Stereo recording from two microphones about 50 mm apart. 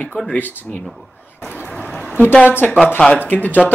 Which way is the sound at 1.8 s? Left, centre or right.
Centre.